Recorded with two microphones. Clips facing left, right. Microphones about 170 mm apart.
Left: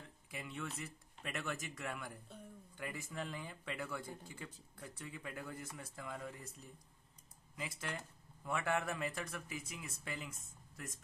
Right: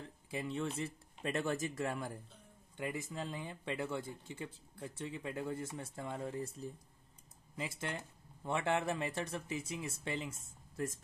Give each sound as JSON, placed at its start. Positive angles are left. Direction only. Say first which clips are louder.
{"t": 0.3, "sound": "speech", "louder": "right 7 dB", "side_deg": -30}
{"t": 2.8, "sound": "speech", "louder": "right 4 dB", "side_deg": -20}